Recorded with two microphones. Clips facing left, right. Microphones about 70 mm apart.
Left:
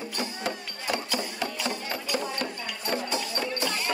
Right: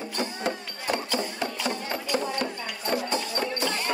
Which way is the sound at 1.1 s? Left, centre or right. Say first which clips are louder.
Right 2 dB; right.